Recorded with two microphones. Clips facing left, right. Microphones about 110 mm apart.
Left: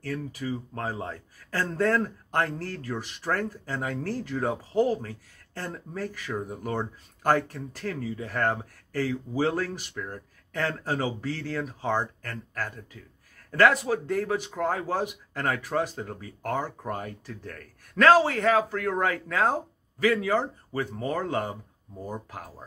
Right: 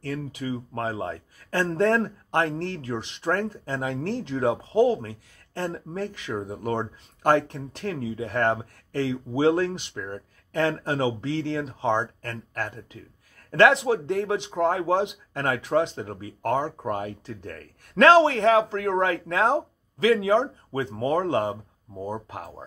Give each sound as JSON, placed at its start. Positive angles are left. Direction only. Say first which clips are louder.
{"t": 1.1, "sound": "speech", "louder": "right 4 dB", "side_deg": -20}